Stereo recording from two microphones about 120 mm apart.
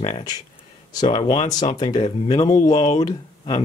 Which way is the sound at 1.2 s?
50° left (ahead or behind).